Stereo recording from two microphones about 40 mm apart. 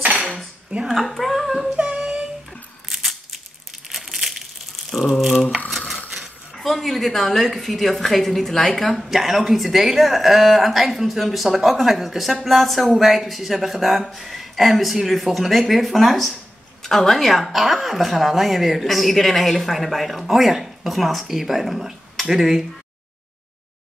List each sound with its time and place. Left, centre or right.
0.0 s cutlery: right
0.8 s a woman's voice: centre
2.0 s a sound: right
2.9 s a sound: centre
3.9 s crushing: centre
4.9 s a woman's voice: centre
5.7 s dishes: centre
6.5 s a woman's voice: centre